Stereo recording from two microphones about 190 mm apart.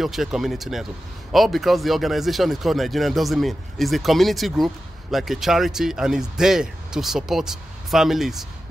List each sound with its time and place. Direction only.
0.0 s speech: centre (ahead or behind)